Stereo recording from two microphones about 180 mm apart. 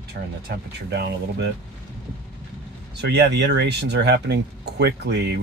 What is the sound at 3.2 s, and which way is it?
Speech, 75° right (ahead or behind).